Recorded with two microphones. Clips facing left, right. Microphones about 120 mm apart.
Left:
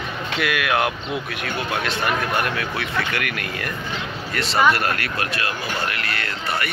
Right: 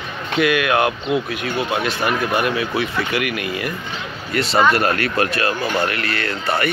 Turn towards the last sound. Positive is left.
turn(degrees=-40)  # may be behind; listen again after turning